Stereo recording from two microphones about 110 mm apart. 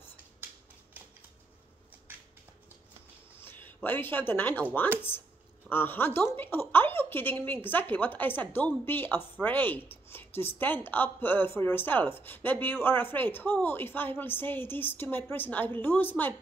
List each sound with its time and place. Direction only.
3.3 s speech: 20° left (ahead or behind)
5.7 s a woman's voice: 20° left (ahead or behind)